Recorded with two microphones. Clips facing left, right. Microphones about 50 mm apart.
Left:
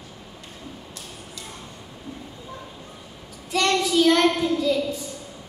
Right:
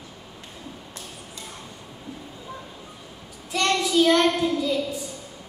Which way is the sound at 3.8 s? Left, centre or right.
Centre.